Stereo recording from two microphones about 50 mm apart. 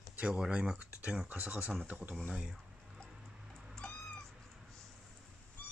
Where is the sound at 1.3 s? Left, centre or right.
Right.